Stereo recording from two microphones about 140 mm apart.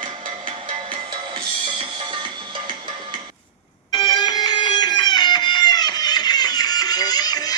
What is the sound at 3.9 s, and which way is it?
Music, 35° left (ahead or behind).